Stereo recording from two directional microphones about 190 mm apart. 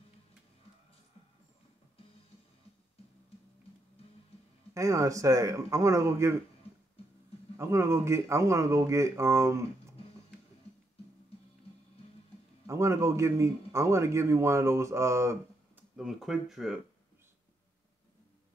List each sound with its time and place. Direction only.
4.7 s speech: 15° right (ahead or behind)
7.5 s speech: 15° right (ahead or behind)
12.6 s a man's voice: 15° right (ahead or behind)
16.0 s speech: 5° right (ahead or behind)